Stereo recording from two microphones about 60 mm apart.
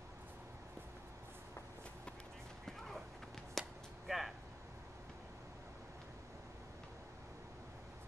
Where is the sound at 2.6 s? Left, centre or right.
Centre.